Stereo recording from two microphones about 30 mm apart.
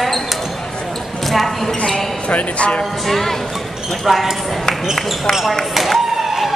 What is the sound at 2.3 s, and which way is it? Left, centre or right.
Speech, left.